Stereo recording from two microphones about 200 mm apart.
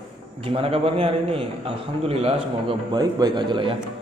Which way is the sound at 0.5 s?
30° right (ahead or behind).